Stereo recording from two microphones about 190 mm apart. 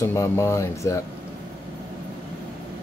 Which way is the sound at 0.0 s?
15° left (ahead or behind).